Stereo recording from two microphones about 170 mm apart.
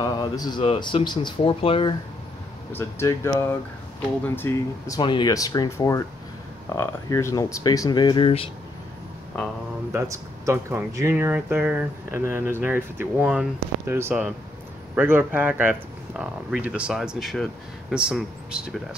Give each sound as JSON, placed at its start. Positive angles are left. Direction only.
{"t": 0.0, "sound": "speech", "side_deg": 25}
{"t": 2.7, "sound": "speech", "side_deg": 15}
{"t": 9.9, "sound": "speech", "side_deg": -20}